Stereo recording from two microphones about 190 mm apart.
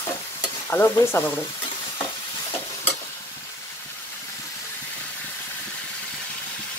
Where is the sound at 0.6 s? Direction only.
10° left (ahead or behind).